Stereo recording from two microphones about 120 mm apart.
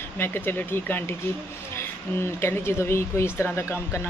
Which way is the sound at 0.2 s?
15° left (ahead or behind).